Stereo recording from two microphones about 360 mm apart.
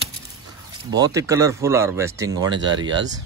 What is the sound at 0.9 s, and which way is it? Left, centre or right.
Speech, centre.